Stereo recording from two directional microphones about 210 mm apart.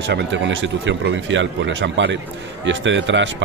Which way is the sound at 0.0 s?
55° right (ahead or behind).